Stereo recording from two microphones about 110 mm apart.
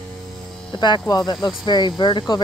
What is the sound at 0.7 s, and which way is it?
Speech, 45° left (ahead or behind).